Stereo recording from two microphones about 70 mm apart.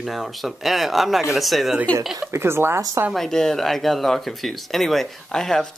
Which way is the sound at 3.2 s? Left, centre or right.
Centre.